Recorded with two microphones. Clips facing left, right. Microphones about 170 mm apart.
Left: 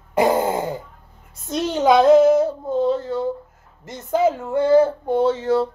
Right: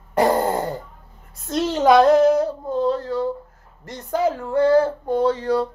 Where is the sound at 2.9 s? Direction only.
25° left (ahead or behind).